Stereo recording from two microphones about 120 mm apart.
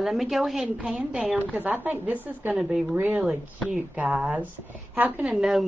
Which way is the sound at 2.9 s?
15° right (ahead or behind).